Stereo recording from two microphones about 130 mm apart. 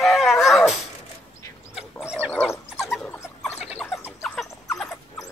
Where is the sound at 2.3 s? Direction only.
10° left (ahead or behind).